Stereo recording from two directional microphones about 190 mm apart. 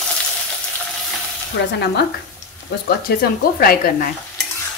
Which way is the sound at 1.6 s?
70° left (ahead or behind).